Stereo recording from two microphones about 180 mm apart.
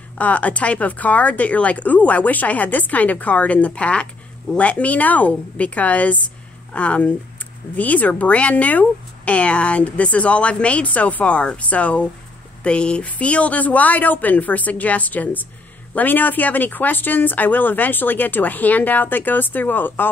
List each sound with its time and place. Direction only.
0.2 s speech: 10° left (ahead or behind)